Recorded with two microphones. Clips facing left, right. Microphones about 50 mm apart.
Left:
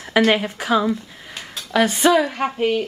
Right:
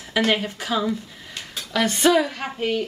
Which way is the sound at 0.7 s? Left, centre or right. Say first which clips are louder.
Left 5 dB; centre.